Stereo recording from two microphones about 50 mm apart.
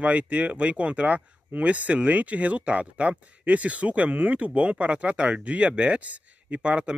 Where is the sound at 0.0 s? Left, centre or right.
Right.